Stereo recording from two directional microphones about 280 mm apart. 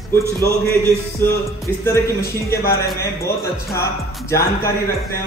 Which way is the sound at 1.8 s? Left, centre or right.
Centre.